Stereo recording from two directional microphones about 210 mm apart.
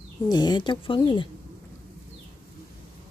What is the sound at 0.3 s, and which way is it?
Speech, 20° left (ahead or behind).